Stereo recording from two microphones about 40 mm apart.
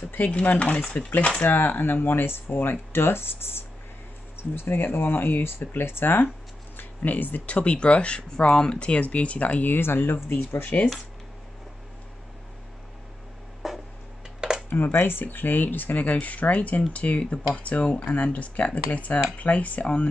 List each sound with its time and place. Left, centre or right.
0.3 s speech: left
1.4 s speech: left
4.4 s speech: left
7.0 s speech: left
7.4 s speech: left
9.7 s speech: left
13.6 s a sound: centre
14.7 s speech: left